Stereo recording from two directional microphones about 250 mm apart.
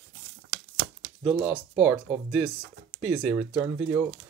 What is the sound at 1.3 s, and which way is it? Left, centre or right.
Speech, centre.